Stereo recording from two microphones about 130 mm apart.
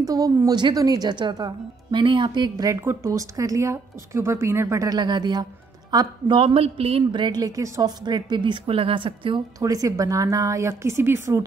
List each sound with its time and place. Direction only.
0.0 s speech: 25° right (ahead or behind)
9.6 s a woman's voice: 25° right (ahead or behind)